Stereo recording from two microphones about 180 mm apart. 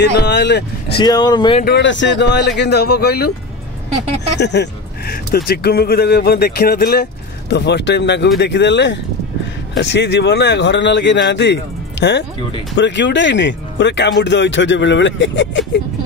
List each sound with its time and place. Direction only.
0.0 s speech: 70° left (ahead or behind)
0.9 s speech: 25° left (ahead or behind)
1.6 s speech: 70° left (ahead or behind)
4.4 s speech: 70° left (ahead or behind); by 15.8 s 90° left